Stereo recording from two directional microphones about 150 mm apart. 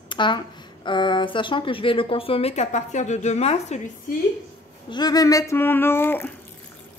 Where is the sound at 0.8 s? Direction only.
30° left (ahead or behind); by 3.8 s 45° left (ahead or behind).